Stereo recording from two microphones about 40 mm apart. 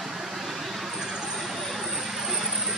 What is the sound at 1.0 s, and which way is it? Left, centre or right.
Vehicle, centre.